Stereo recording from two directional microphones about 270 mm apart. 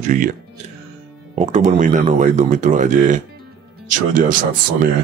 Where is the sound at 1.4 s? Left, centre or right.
Right.